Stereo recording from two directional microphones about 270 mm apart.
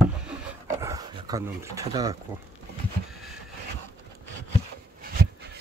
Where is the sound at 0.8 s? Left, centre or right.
Centre.